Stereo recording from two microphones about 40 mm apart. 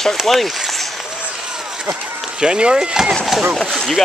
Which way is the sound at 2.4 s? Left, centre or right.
Right.